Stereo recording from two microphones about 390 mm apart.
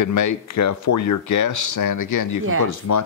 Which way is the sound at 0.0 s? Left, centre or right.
Left.